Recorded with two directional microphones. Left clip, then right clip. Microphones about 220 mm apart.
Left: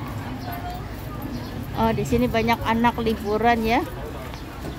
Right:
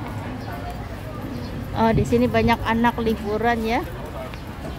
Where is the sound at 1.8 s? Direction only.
10° right (ahead or behind).